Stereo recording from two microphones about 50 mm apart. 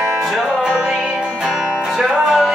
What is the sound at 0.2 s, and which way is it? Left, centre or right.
Music, centre.